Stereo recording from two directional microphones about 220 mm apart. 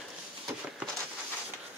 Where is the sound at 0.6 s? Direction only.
5° right (ahead or behind).